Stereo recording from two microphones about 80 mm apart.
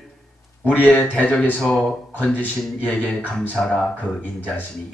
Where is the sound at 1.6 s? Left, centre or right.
Centre.